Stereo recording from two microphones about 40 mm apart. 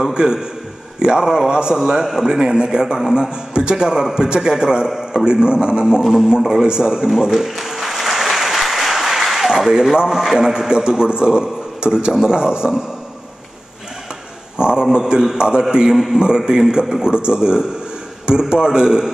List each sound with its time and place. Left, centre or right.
0.1 s a man's voice: centre
1.2 s a man's voice: centre
1.5 s a man's voice: right
5.2 s a man's voice: right
7.2 s applause: centre; by 11.4 s right
11.8 s a man's voice: right
14.6 s a man's voice: right